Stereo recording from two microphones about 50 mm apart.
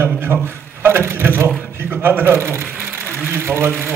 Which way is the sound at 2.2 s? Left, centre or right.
Right.